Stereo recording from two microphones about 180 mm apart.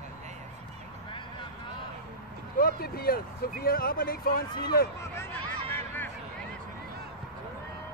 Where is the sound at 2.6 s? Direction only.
55° left (ahead or behind).